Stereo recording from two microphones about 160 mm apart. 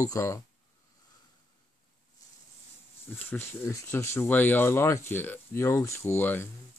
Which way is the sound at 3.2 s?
15° left (ahead or behind).